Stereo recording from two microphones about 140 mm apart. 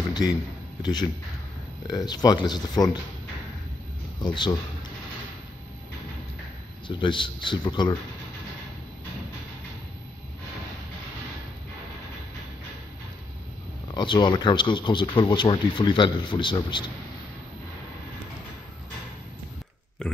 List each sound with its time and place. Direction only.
0.1 s a man's voice: 30° left (ahead or behind)
1.9 s speech: 25° left (ahead or behind)
4.2 s speech: 30° left (ahead or behind)
6.9 s speech: 35° left (ahead or behind)
13.9 s speech: 35° left (ahead or behind)